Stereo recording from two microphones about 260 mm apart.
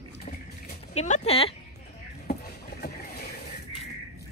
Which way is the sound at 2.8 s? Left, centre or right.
Left.